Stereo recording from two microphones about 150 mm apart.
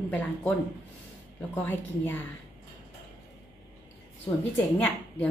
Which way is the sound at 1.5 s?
10° left (ahead or behind).